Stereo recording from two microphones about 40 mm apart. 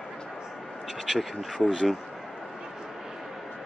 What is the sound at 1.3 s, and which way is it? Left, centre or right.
Speech, centre.